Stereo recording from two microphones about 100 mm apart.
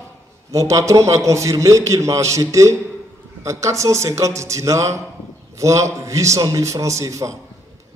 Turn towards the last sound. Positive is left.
turn(degrees=-35)  # may be behind; listen again after turning